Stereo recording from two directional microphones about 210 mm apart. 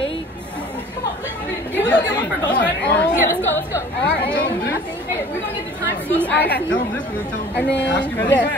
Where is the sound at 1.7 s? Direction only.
5° left (ahead or behind).